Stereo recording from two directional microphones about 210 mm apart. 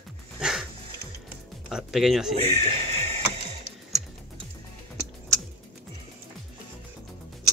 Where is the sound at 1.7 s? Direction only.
Centre (ahead or behind).